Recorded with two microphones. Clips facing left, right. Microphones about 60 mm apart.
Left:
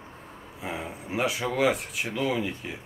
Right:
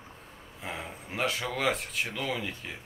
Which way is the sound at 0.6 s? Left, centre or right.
Centre.